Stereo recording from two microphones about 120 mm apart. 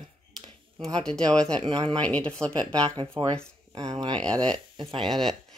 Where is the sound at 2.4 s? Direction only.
25° right (ahead or behind).